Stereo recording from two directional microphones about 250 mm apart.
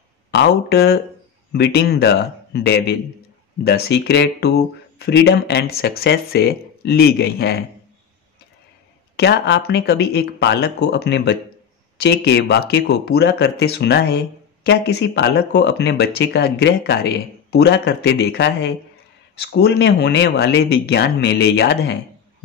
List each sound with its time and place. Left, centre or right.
0.3 s speech: left
9.1 s speech: left